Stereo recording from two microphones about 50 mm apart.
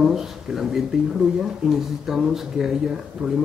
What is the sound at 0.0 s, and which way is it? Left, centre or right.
A man's voice, centre.